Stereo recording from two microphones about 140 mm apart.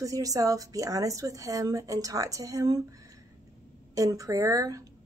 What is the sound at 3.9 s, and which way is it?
Speech, 25° right (ahead or behind).